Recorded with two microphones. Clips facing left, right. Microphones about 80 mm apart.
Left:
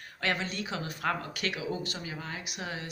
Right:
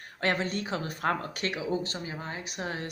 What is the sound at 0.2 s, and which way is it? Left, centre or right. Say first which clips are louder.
Speech: right 3 dB; right.